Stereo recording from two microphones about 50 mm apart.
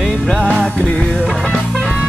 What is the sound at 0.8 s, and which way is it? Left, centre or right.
Music, left.